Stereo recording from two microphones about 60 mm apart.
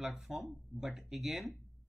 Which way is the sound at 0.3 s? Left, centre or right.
Centre.